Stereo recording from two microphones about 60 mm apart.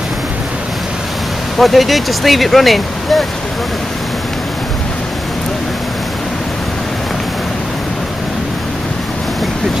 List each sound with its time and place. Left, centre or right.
1.6 s speech: centre